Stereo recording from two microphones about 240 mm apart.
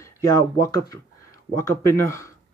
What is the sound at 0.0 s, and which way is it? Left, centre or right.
Speech, centre.